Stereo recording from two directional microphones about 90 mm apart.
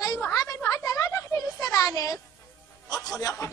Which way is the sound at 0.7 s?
40° left (ahead or behind).